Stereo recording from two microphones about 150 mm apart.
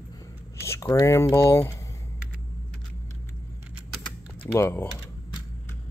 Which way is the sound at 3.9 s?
10° left (ahead or behind).